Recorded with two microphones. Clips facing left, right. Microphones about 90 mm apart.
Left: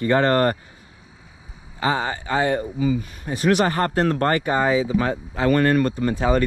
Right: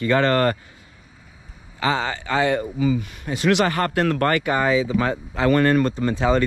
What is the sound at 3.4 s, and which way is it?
Speech, 75° right (ahead or behind).